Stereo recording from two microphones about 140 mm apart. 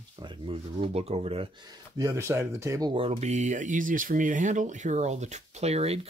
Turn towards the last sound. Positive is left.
turn(degrees=-50)  # may be behind; listen again after turning